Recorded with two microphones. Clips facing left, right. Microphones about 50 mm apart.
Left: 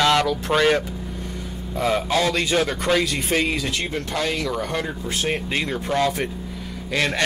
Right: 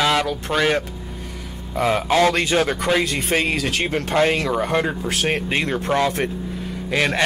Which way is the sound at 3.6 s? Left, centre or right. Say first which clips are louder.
Right 3 dB; right.